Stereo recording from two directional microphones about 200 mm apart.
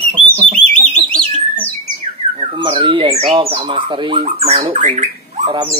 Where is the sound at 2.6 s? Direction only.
25° right (ahead or behind).